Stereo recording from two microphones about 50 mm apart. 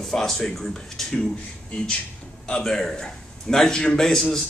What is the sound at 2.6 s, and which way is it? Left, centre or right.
A man's voice, centre.